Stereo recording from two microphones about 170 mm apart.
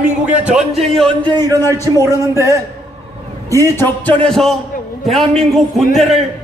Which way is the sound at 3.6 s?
15° left (ahead or behind).